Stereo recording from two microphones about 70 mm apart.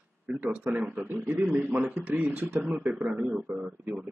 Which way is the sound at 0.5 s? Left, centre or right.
Centre.